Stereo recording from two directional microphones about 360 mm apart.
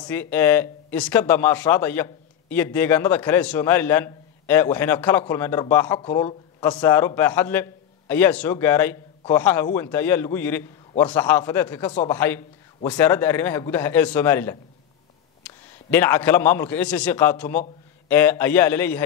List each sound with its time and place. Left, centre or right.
0.0 s speech: centre
15.9 s speech: centre